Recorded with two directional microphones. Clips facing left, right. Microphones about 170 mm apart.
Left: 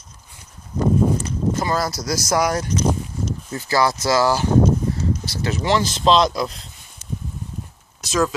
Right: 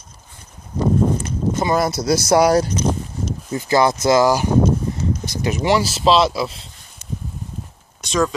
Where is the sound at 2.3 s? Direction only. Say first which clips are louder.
Right 6 dB; 30° right (ahead or behind).